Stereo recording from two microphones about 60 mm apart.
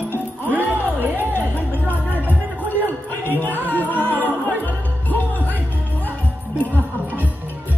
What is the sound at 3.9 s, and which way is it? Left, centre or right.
Music, left.